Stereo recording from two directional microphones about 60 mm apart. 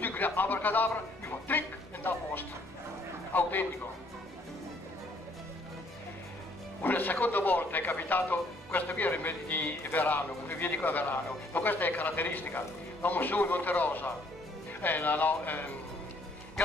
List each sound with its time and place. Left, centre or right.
0.0 s speech: left
3.3 s speech: left
6.8 s speech: left